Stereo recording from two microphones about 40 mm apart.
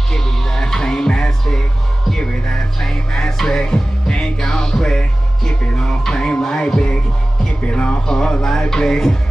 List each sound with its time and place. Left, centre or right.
0.1 s music: centre
5.5 s music: left
5.9 s music: centre
7.6 s speech: left